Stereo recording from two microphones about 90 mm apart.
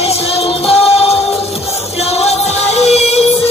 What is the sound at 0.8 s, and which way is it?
Music, 90° left.